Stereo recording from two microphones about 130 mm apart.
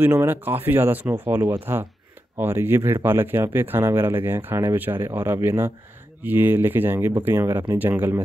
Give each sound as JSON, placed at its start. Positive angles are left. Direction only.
{"t": 0.1, "sound": "speech", "side_deg": -20}